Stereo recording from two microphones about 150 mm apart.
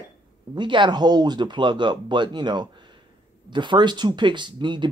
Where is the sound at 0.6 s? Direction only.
30° right (ahead or behind).